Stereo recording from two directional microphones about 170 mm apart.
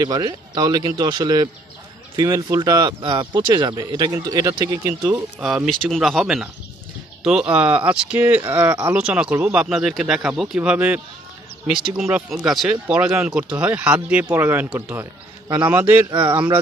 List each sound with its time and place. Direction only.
0.0 s speech: 25° right (ahead or behind)
5.0 s speech: 5° right (ahead or behind)
15.4 s a man's voice: 20° right (ahead or behind)
15.7 s speech: 10° right (ahead or behind)
16.1 s speech: 30° right (ahead or behind)